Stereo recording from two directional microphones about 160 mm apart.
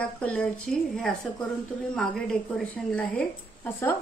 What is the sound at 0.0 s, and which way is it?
A woman's voice, 10° left (ahead or behind).